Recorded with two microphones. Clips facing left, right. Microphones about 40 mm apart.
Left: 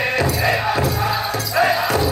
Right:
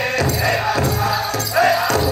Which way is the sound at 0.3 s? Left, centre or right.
Centre.